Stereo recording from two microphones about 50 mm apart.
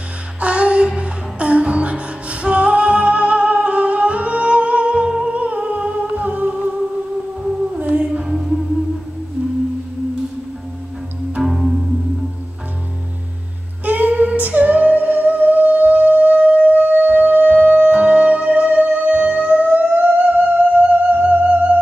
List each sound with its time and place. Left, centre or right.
0.4 s music: right
5.4 s humming: right
7.7 s music: right
8.4 s music: centre
11.4 s music: centre
13.8 s music: right